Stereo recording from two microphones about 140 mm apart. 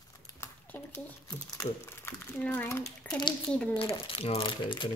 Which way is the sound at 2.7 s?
20° left (ahead or behind).